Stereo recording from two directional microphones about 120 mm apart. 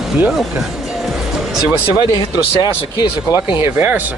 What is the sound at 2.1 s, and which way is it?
Speech, 35° left (ahead or behind).